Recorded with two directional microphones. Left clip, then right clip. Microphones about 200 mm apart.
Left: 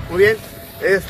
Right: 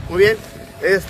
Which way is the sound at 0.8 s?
20° right (ahead or behind).